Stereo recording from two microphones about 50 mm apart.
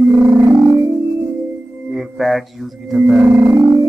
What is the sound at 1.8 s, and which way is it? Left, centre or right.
Music, centre.